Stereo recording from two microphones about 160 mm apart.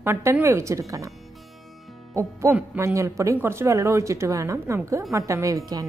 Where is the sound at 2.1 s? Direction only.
15° right (ahead or behind).